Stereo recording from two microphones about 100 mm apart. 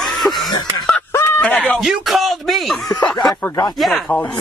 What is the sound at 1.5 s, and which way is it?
Speech, 15° left (ahead or behind).